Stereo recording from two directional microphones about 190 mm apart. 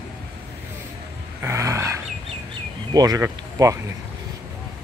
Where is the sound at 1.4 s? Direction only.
15° right (ahead or behind).